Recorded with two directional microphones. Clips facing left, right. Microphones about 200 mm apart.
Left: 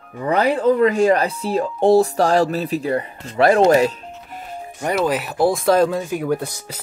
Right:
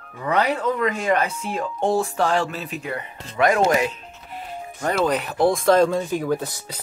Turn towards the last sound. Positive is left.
turn(degrees=10)  # may be behind; listen again after turning